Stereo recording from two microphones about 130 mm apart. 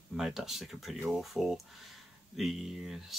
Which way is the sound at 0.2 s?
5° right (ahead or behind).